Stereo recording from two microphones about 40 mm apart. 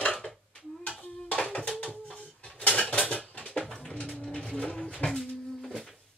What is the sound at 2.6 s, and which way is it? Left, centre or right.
Dishes, left.